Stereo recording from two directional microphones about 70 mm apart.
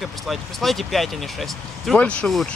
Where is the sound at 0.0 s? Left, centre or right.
Centre.